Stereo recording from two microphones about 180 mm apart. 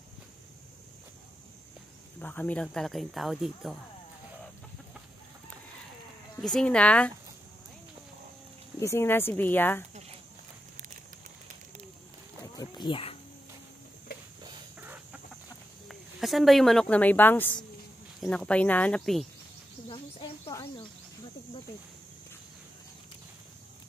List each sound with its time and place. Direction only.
2.1 s speech: 10° left (ahead or behind)
6.4 s speech: 5° left (ahead or behind)
8.7 s speech: 15° left (ahead or behind)
12.5 s wild animals: 25° left (ahead or behind)
15.9 s speech: centre (ahead or behind)
19.9 s snake: 25° left (ahead or behind)